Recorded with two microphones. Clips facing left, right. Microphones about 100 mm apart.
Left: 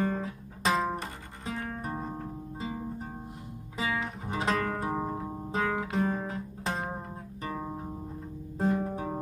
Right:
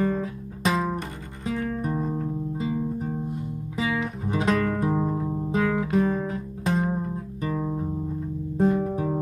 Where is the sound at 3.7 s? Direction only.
35° left (ahead or behind).